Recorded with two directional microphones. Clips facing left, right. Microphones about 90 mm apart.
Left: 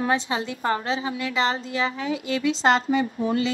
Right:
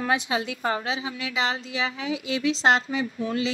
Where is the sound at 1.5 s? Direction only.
40° left (ahead or behind).